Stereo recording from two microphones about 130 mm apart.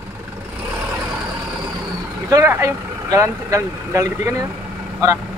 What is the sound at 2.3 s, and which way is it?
Speech, 20° right (ahead or behind).